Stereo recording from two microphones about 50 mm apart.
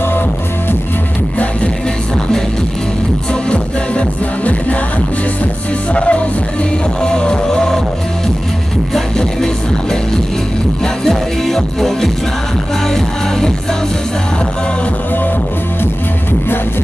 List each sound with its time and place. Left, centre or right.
3.4 s music: left
5.9 s music: left
11.1 s music: centre